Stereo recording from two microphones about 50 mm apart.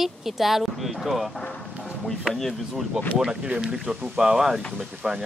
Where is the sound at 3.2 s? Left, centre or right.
Centre.